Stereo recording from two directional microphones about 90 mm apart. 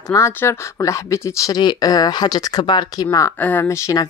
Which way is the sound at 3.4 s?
20° left (ahead or behind).